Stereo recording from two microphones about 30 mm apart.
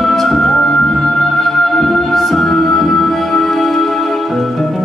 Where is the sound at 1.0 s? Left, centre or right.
Centre.